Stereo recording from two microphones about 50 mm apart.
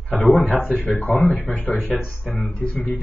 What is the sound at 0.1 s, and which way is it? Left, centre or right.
Speech, left.